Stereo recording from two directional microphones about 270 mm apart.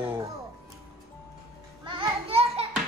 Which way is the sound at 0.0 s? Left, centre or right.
Centre.